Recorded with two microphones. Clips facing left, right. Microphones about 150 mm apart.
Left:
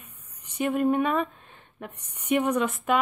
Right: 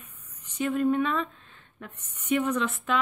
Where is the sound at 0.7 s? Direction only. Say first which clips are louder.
Left 1 dB; 55° left (ahead or behind).